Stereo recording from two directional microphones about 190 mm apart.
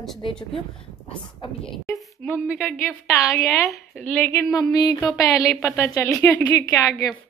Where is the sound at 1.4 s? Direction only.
25° left (ahead or behind).